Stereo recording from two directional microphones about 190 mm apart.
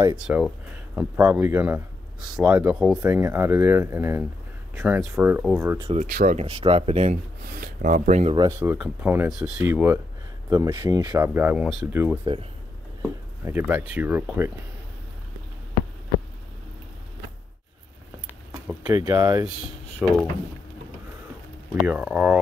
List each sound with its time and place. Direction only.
0.3 s speech: 10° right (ahead or behind)
3.0 s speech: 15° right (ahead or behind)
5.8 s speech: 30° right (ahead or behind)
6.0 s speech: 45° right (ahead or behind)
6.4 s speech: 30° right (ahead or behind)
7.6 s speech: 45° right (ahead or behind)
8.5 s speech: 10° right (ahead or behind)
13.5 s speech: 10° right (ahead or behind)
19.0 s speech: 20° right (ahead or behind)
20.0 s speech: 5° right (ahead or behind)
21.8 s speech: 5° right (ahead or behind)